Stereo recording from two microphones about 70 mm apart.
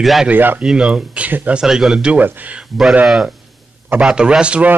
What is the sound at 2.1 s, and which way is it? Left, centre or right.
Speech, right.